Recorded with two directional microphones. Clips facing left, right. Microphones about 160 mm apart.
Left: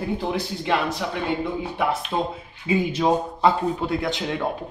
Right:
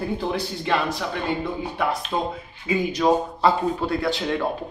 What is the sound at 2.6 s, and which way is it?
A man's voice, 25° left (ahead or behind).